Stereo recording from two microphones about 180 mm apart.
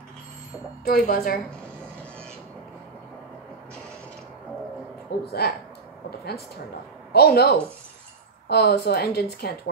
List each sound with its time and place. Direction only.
0.8 s a woman's voice: 55° left (ahead or behind)
5.2 s a woman's voice: 60° left (ahead or behind)